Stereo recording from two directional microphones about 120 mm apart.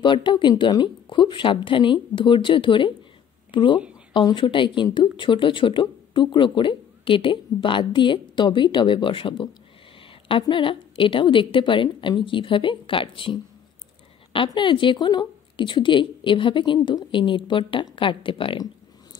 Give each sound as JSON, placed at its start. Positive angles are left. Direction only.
{"t": 0.0, "sound": "speech", "side_deg": 40}